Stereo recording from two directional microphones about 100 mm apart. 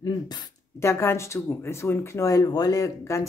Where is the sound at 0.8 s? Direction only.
25° left (ahead or behind).